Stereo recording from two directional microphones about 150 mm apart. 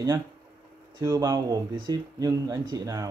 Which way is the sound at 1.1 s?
25° right (ahead or behind).